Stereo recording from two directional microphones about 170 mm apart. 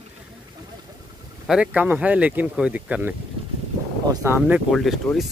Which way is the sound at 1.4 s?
5° right (ahead or behind).